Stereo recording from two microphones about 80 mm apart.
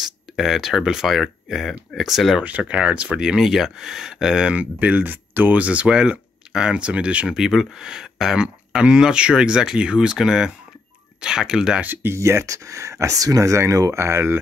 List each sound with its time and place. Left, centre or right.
0.0 s speech: centre
2.4 s speech: centre
11.8 s speech: right